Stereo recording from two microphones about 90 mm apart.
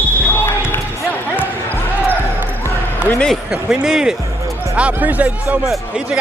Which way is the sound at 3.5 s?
5° right (ahead or behind).